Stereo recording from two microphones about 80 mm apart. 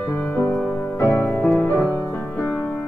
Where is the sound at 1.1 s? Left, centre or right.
Left.